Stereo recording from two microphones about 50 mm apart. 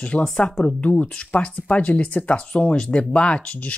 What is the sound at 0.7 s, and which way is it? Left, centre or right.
Speech, left.